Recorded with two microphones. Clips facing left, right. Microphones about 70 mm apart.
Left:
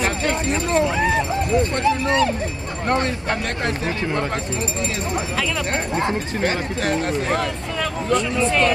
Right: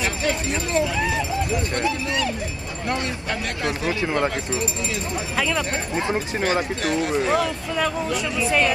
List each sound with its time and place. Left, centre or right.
0.0 s a sound: left
1.8 s speech: left
5.7 s speech: left
7.7 s speech: centre